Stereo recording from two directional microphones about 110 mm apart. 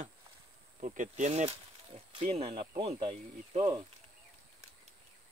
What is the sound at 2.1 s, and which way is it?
Speech, 60° right (ahead or behind).